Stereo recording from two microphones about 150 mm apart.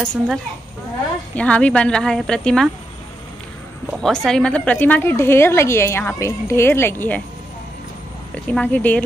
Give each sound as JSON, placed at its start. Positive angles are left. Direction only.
{"t": 0.0, "sound": "speech", "side_deg": 5}
{"t": 4.0, "sound": "a woman's voice", "side_deg": 5}
{"t": 8.5, "sound": "a woman's voice", "side_deg": 10}